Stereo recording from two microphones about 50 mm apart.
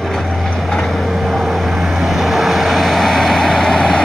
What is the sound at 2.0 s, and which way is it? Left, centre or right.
Vehicle, centre.